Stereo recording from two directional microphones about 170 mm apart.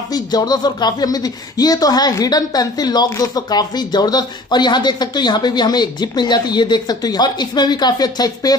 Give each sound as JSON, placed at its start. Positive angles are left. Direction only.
{"t": 0.1, "sound": "speech", "side_deg": 25}